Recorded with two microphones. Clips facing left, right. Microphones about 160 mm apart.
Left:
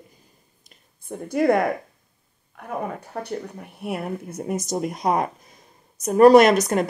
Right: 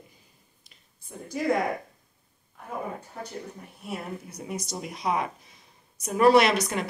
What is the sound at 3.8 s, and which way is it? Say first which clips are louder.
Speech: left 7 dB; 55° left (ahead or behind).